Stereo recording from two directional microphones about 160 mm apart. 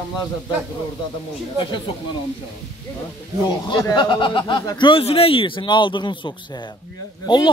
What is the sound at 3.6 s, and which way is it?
Speech, 25° left (ahead or behind).